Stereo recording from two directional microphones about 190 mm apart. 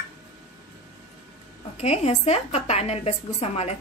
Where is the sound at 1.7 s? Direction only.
35° left (ahead or behind).